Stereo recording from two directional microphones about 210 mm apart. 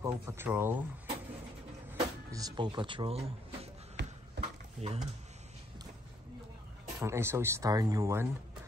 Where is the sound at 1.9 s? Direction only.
15° right (ahead or behind).